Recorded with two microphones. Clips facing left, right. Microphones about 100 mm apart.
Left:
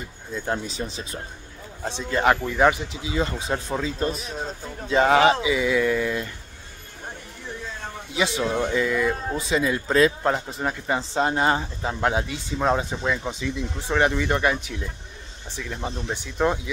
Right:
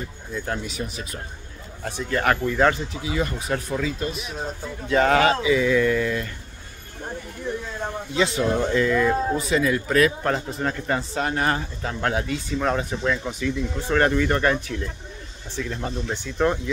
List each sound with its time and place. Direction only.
0.3 s speech: 25° left (ahead or behind)
4.0 s speech: 35° left (ahead or behind)
4.8 s speech: 20° left (ahead or behind)
8.1 s speech: 20° left (ahead or behind)